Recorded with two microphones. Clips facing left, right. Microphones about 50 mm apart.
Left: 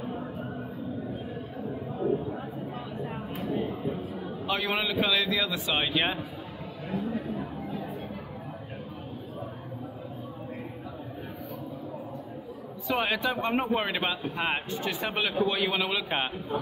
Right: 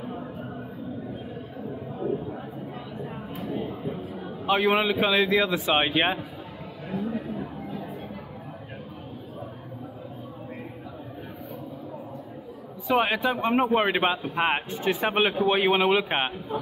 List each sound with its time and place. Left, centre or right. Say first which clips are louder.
4.5 s a man's voice: right 7 dB; right
12.8 s a man's voice: right 4 dB; right